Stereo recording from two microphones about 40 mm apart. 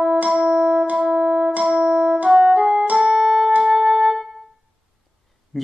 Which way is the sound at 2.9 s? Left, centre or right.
Right.